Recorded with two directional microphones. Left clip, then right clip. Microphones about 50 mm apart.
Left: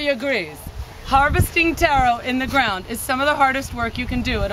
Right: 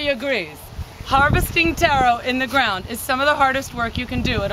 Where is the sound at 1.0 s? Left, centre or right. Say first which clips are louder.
Even; centre.